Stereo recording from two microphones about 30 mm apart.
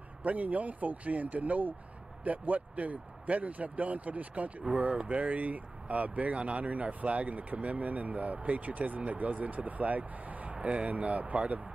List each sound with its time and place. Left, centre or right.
0.2 s speech: right
10.5 s speech: right